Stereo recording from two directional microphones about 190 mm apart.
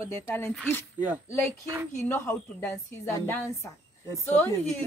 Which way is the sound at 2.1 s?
10° left (ahead or behind).